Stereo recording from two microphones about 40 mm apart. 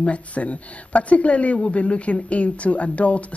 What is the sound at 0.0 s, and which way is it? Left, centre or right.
Speech, left.